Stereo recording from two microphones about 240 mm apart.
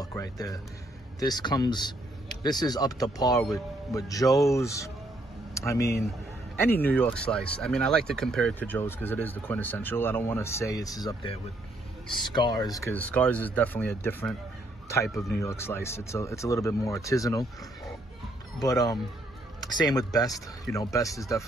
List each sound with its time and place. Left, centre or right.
0.0 s speech: centre
15.4 s speech: centre
18.6 s speech: centre